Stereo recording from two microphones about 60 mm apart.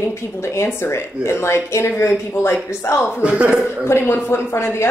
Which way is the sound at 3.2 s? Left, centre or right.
Centre.